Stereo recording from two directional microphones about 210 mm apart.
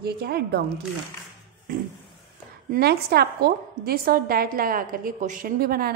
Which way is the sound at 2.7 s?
50° right (ahead or behind).